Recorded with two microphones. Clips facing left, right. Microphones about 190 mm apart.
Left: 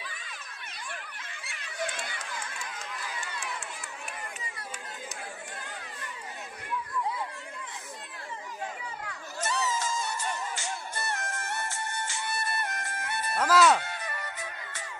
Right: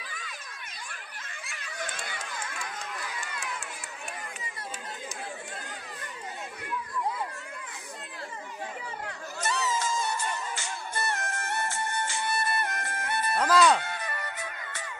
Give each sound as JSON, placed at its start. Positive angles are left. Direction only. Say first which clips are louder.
{"t": 9.4, "sound": "a sound", "louder": "right 1 dB", "side_deg": -60}
{"t": 11.1, "sound": "music", "louder": "even", "side_deg": -60}
{"t": 13.4, "sound": "music", "louder": "even", "side_deg": 5}